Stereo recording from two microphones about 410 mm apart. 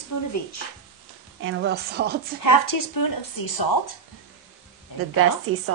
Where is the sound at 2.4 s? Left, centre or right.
Left.